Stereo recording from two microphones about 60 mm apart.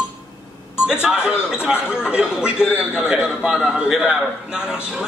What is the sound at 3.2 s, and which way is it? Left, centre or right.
Speech, centre.